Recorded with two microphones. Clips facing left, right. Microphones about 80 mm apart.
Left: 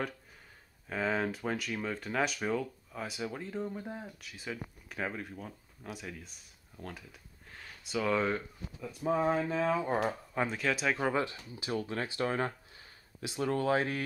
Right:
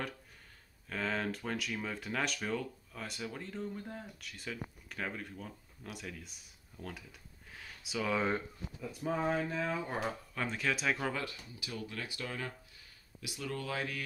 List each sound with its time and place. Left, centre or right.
0.8 s speech: centre
4.2 s speech: centre
7.5 s a sound: centre
9.0 s speech: left
9.3 s speech: left
10.4 s speech: centre
11.0 s speech: left